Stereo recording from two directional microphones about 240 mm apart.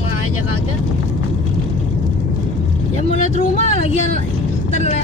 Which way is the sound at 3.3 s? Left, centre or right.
Left.